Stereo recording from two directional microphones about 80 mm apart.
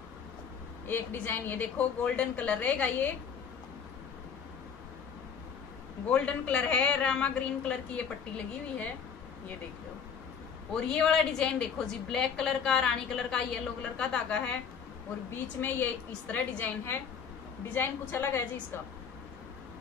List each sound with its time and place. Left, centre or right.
0.8 s a woman's voice: left
6.0 s a woman's voice: centre
10.7 s a woman's voice: centre; by 18.4 s left